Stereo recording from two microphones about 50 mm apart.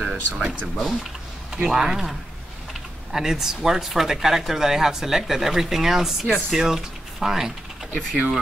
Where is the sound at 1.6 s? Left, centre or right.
Centre.